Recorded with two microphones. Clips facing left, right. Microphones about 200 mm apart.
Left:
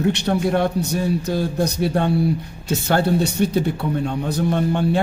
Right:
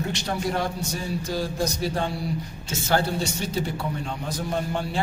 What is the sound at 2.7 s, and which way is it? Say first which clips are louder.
Speech: left 6 dB; 60° left (ahead or behind).